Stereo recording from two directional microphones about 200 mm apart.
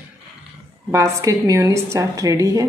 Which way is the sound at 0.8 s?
15° right (ahead or behind).